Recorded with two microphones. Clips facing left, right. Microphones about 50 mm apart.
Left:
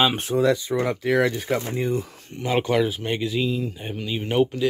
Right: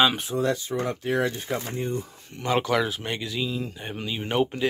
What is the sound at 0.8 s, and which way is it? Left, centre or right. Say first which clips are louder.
Speech: left 4 dB; left.